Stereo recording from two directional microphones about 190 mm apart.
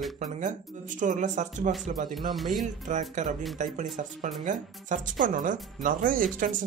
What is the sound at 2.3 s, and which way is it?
Speech, centre (ahead or behind).